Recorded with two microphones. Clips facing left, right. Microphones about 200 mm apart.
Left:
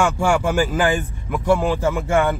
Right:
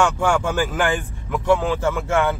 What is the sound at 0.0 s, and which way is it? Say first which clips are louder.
Speech: left 1 dB; 10° left (ahead or behind).